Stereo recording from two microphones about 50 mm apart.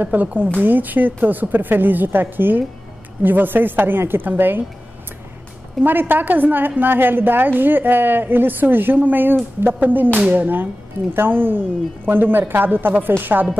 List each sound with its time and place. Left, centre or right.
0.0 s a woman's voice: right
5.8 s a woman's voice: right